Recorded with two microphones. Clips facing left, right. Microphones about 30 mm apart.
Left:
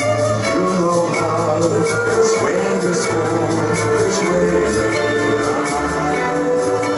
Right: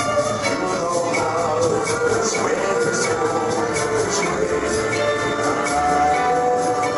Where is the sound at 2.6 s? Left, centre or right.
Centre.